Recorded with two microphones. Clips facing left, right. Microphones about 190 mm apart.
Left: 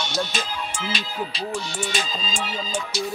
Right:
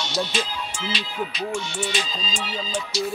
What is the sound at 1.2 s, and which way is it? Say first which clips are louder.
Speech: right 3 dB; 35° left (ahead or behind).